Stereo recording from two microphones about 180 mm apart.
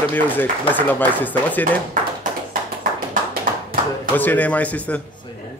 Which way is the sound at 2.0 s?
45° right (ahead or behind).